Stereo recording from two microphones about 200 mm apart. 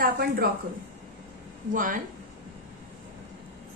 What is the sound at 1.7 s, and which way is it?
Speech, 40° right (ahead or behind).